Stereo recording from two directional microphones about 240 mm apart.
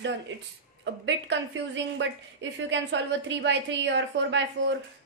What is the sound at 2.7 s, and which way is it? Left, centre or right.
A woman's voice, right.